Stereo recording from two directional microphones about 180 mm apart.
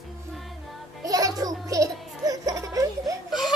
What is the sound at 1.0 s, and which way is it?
Music, 20° right (ahead or behind).